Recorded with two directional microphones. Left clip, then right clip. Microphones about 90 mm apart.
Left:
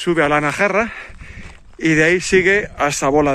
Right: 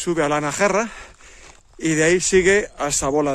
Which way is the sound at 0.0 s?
30° right (ahead or behind).